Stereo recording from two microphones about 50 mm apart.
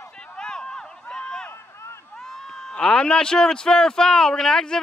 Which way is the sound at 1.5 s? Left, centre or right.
Left.